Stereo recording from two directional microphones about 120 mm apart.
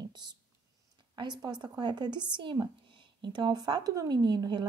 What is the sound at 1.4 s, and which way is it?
Speech, 35° right (ahead or behind).